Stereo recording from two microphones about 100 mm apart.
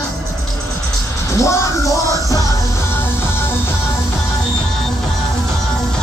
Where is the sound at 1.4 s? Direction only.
30° left (ahead or behind).